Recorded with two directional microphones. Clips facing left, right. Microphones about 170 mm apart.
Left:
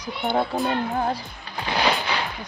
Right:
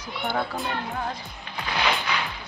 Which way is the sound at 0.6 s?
35° left (ahead or behind).